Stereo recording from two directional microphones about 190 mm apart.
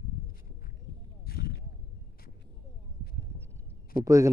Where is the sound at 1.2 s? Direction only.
55° left (ahead or behind).